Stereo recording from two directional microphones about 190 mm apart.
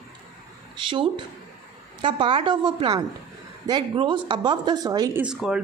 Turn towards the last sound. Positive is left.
turn(degrees=-5)  # may be behind; listen again after turning